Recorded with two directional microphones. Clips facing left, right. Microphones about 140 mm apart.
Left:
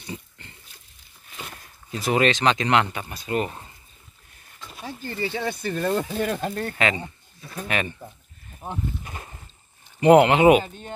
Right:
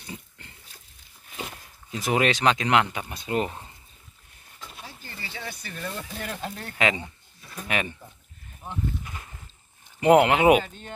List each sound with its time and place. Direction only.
0.0 s dog: 5° right (ahead or behind)
1.3 s speech: 15° right (ahead or behind)
3.1 s speech: 20° right (ahead or behind)
4.8 s speech: 55° left (ahead or behind)
7.6 s speech: 10° right (ahead or behind)
8.6 s a sound: 40° left (ahead or behind)
9.9 s speech: 5° right (ahead or behind)
10.6 s speech: 15° left (ahead or behind)